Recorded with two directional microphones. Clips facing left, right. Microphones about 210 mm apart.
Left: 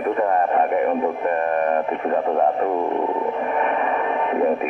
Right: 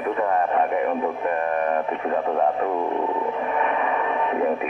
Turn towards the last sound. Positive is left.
turn(degrees=40)  # may be behind; listen again after turning